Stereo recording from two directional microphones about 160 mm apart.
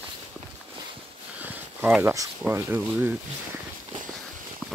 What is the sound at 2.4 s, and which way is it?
Speech, 15° right (ahead or behind).